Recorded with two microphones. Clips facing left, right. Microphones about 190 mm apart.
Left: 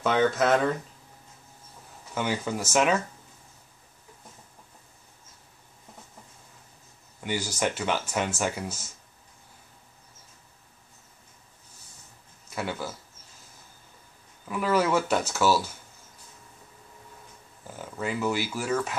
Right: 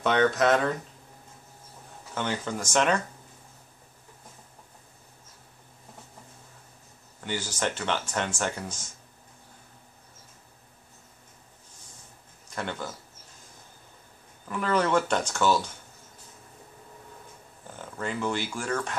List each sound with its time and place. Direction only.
0.0 s speech: centre (ahead or behind)
2.1 s speech: 10° left (ahead or behind)
7.2 s speech: 10° left (ahead or behind)
12.4 s speech: 5° left (ahead or behind)
14.5 s speech: 5° left (ahead or behind)
17.6 s speech: 5° left (ahead or behind)